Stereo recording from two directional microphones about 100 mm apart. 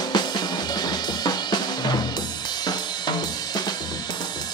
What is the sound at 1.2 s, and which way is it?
Drum, 45° left (ahead or behind).